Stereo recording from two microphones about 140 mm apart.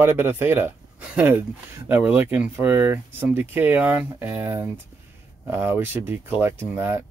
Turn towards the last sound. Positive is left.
turn(degrees=-15)  # may be behind; listen again after turning